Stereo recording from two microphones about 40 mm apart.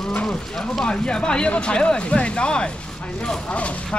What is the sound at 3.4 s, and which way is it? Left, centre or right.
Cattle, left.